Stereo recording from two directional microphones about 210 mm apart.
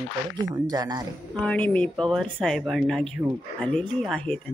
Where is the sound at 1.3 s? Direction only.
5° left (ahead or behind).